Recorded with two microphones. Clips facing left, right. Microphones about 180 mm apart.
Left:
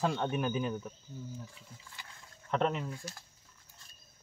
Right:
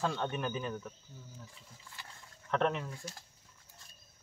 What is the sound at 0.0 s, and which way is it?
Speech, 15° left (ahead or behind).